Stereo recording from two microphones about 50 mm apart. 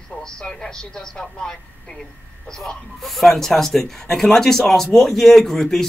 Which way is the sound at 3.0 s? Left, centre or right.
Centre.